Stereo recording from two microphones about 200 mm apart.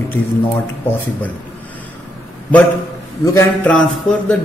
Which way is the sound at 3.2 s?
10° left (ahead or behind).